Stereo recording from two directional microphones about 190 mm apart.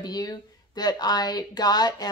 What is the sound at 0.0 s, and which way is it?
Speech, 20° left (ahead or behind).